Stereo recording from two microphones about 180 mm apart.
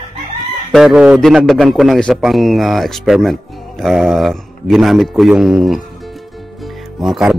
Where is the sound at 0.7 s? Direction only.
5° right (ahead or behind).